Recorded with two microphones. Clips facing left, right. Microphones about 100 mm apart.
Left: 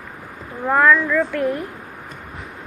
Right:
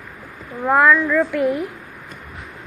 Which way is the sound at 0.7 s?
10° right (ahead or behind).